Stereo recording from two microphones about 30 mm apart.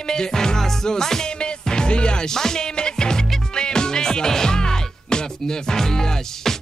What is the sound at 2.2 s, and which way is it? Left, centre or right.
Speech, centre.